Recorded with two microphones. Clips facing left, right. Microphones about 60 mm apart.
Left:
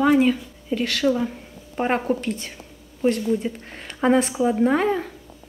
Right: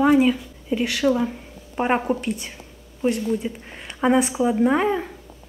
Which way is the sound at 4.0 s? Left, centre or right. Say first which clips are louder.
Even; centre.